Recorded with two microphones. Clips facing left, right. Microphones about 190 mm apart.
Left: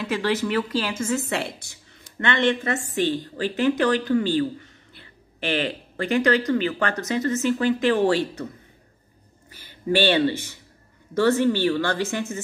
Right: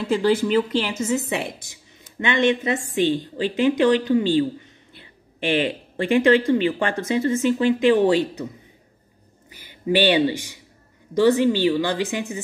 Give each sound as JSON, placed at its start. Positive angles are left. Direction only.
{"t": 0.0, "sound": "speech", "side_deg": -25}
{"t": 6.2, "sound": "speech", "side_deg": -20}
{"t": 9.5, "sound": "speech", "side_deg": -15}